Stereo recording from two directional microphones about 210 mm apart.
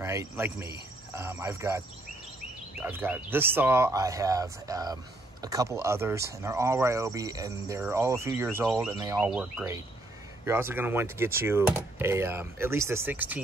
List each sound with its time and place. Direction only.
0.0 s speech: 15° right (ahead or behind)
2.8 s speech: 10° right (ahead or behind)
9.3 s speech: 5° right (ahead or behind)